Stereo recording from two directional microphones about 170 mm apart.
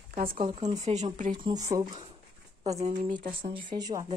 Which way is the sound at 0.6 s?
40° right (ahead or behind).